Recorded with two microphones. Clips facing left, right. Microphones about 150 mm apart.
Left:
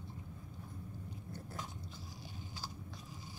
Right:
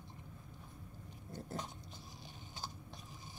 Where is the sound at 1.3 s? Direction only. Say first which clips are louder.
Right 4 dB; 20° right (ahead or behind).